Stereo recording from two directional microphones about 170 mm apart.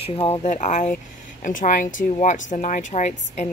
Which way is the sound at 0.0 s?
35° left (ahead or behind).